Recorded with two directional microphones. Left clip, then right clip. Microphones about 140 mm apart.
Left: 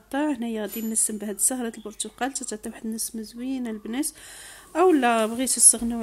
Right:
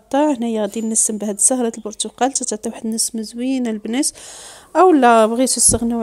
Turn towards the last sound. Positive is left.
turn(degrees=-35)  # may be behind; listen again after turning